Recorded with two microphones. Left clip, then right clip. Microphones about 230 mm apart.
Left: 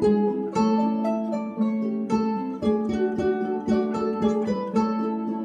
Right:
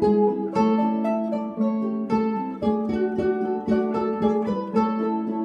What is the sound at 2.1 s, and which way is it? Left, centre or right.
Music, centre.